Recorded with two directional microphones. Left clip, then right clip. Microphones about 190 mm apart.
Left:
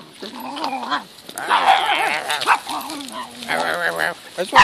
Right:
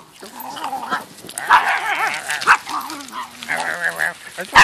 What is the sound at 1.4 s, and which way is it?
Dog, 20° left (ahead or behind).